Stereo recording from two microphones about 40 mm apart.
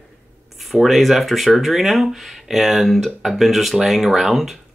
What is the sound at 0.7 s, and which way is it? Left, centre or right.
Speech, centre.